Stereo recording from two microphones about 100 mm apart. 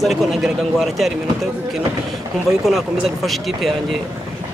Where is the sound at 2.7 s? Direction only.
Centre (ahead or behind).